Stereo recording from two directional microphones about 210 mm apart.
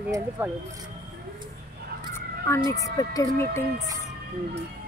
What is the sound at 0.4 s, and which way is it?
Speech, 10° right (ahead or behind).